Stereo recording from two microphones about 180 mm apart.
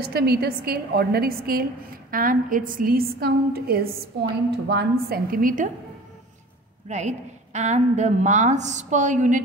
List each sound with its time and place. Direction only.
0.1 s a woman's voice: 60° right (ahead or behind)
6.9 s a woman's voice: 40° right (ahead or behind)